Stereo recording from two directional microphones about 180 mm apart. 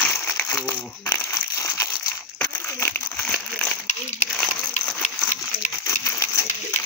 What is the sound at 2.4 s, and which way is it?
Crumpling, 10° left (ahead or behind).